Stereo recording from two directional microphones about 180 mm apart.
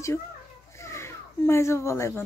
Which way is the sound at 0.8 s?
15° left (ahead or behind).